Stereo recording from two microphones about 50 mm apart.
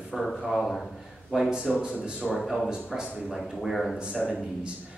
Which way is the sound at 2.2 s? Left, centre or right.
Centre.